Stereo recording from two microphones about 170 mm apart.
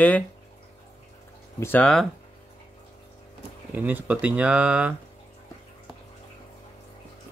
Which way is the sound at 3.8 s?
10° right (ahead or behind).